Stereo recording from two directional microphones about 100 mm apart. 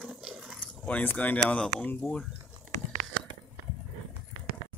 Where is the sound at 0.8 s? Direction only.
15° left (ahead or behind).